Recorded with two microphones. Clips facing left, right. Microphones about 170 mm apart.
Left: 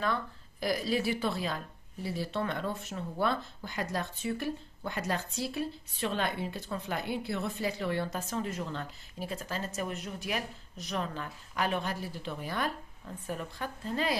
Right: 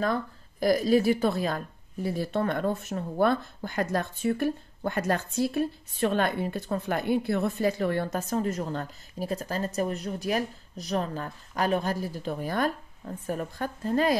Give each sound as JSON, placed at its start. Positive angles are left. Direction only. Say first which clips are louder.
{"t": 0.0, "sound": "speech", "louder": "right 5 dB", "side_deg": -45}